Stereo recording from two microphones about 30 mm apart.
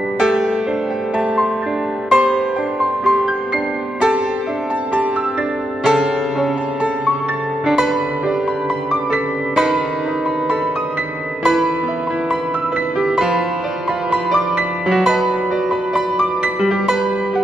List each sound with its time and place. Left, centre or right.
2.0 s music: centre
5.9 s music: centre
7.6 s music: centre
9.1 s music: right
13.1 s music: centre
14.9 s music: centre